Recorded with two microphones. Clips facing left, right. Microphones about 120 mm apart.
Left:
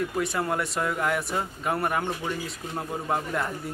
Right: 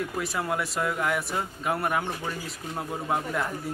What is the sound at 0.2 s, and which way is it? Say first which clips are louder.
A man's voice: left 1 dB; centre (ahead or behind).